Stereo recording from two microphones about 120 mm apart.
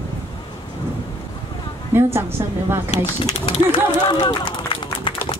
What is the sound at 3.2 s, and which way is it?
Run, 40° left (ahead or behind).